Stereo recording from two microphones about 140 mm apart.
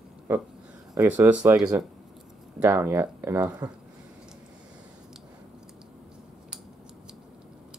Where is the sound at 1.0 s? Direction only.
10° right (ahead or behind).